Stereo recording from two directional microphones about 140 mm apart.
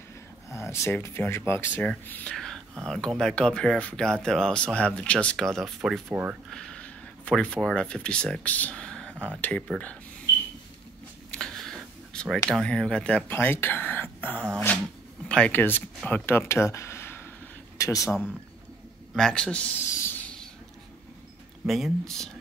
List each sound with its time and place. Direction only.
0.5 s speech: 20° left (ahead or behind); by 6.0 s centre (ahead or behind)
6.0 s speech: 10° right (ahead or behind)
6.5 s speech: 5° left (ahead or behind)
11.2 s a sound: 5° left (ahead or behind)
12.4 s speech: 5° left (ahead or behind); by 18.1 s 20° left (ahead or behind)
19.1 s speech: 5° left (ahead or behind)
19.9 s a sound: 15° left (ahead or behind)
21.6 s speech: centre (ahead or behind)